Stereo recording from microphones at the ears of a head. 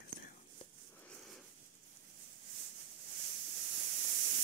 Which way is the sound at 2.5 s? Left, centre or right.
Right.